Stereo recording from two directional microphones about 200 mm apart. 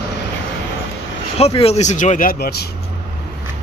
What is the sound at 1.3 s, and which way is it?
Speech, 30° left (ahead or behind).